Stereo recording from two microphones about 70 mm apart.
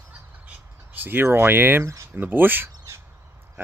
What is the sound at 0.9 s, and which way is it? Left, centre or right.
Speech, right.